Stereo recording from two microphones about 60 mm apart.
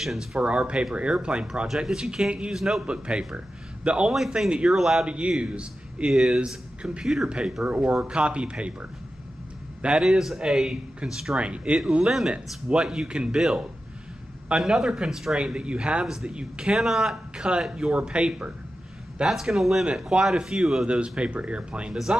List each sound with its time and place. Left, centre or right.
0.0 s speech: centre
0.4 s a man's voice: centre
5.0 s a man's voice: centre
6.0 s a man's voice: centre
6.8 s a man's voice: centre
9.8 s a man's voice: centre
10.0 s a man's voice: centre
15.3 s a man's voice: centre
16.7 s a man's voice: centre
19.2 s a man's voice: centre
21.9 s a man's voice: centre